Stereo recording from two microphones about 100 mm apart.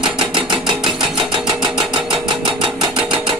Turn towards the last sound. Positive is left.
turn(degrees=-55)  # may be behind; listen again after turning